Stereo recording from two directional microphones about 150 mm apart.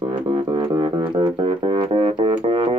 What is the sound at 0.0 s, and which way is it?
Music, 35° right (ahead or behind).